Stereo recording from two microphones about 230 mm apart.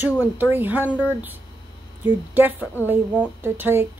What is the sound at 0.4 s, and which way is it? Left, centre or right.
A woman's voice, centre.